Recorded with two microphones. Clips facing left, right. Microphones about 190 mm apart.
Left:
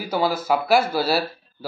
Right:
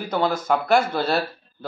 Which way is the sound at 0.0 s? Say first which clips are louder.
Even; 5° left (ahead or behind).